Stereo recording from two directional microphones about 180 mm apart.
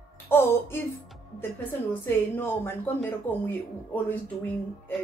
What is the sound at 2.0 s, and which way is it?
Speech, 10° left (ahead or behind).